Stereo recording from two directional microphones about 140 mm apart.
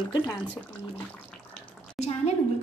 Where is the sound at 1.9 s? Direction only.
50° left (ahead or behind).